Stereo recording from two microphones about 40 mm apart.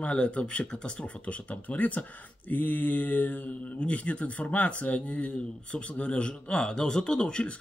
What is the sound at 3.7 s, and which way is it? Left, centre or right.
Speech, left.